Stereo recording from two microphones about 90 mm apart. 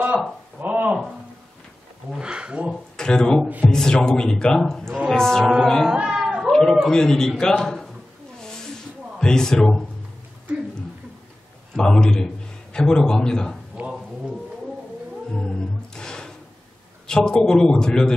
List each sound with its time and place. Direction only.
0.6 s a sound: 15° right (ahead or behind)
2.0 s speech: 10° right (ahead or behind)
2.7 s speech: 5° left (ahead or behind)
5.1 s a sound: 5° left (ahead or behind)
5.5 s speech: 5° right (ahead or behind)
5.9 s cat: 5° right (ahead or behind)
6.5 s speech: 5° left (ahead or behind)
8.4 s snake: 5° left (ahead or behind)
9.2 s speech: 5° left (ahead or behind)
11.7 s speech: 5° left (ahead or behind)
13.8 s a sound: 15° right (ahead or behind)
15.3 s music: 5° left (ahead or behind)
17.1 s speech: 10° left (ahead or behind)